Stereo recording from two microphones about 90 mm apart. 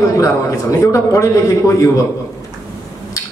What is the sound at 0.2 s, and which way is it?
A man's voice, 35° left (ahead or behind).